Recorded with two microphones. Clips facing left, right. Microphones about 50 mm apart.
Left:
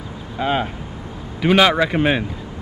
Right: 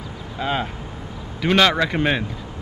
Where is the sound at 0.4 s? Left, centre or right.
Centre.